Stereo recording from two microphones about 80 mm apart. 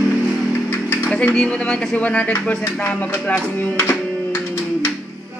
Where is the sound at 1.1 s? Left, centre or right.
Centre.